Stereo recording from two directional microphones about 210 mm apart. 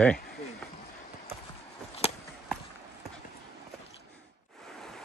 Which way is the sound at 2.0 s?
30° left (ahead or behind).